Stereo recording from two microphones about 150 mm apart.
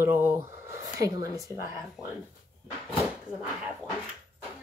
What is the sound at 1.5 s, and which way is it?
Speech, 25° left (ahead or behind).